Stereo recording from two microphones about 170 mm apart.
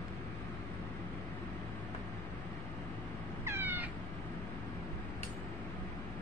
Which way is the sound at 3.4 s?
15° right (ahead or behind).